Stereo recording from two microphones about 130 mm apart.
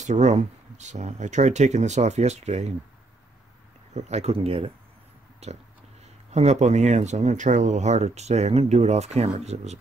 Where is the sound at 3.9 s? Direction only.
60° right (ahead or behind).